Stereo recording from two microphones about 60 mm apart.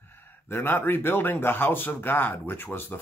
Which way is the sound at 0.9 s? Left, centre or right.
Left.